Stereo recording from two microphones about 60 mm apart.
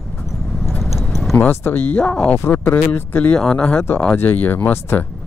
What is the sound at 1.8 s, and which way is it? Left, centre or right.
Speech, centre.